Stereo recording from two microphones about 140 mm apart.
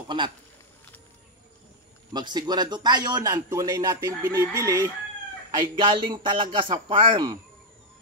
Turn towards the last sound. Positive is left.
turn(degrees=-30)  # may be behind; listen again after turning